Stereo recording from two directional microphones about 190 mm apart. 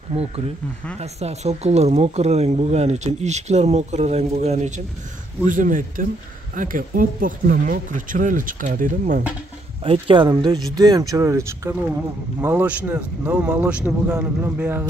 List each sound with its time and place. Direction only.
0.9 s speech: 35° right (ahead or behind)
9.8 s speech: 25° right (ahead or behind)